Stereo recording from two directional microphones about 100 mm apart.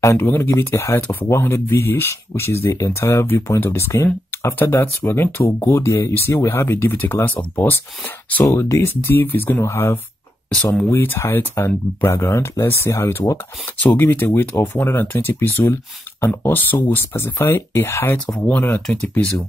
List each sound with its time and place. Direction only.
0.0 s speech: 25° left (ahead or behind)
8.5 s speech: 30° left (ahead or behind)
13.7 s speech: 20° left (ahead or behind)